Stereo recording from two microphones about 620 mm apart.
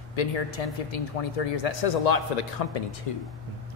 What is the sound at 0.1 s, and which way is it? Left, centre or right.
Speech, left.